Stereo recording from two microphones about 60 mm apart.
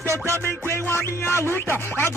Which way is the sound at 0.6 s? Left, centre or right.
Left.